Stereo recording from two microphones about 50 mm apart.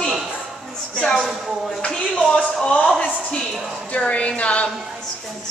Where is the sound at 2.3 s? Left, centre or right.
Left.